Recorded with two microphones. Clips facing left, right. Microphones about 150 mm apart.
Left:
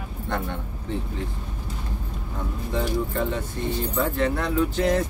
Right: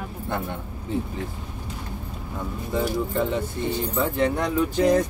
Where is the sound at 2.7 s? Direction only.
10° right (ahead or behind).